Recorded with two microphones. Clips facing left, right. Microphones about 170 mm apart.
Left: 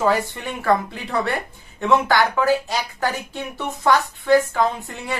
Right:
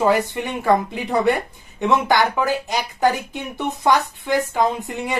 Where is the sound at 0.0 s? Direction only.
20° right (ahead or behind).